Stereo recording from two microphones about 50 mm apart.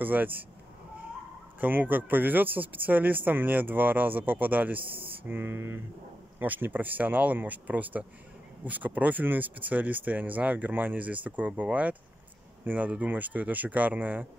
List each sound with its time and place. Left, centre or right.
0.0 s speech: right
1.6 s speech: right
6.4 s speech: right